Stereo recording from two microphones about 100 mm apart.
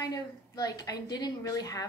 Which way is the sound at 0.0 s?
40° left (ahead or behind).